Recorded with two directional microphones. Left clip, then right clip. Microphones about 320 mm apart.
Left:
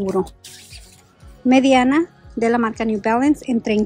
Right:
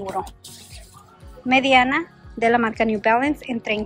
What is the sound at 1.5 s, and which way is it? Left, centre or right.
A woman's voice, centre.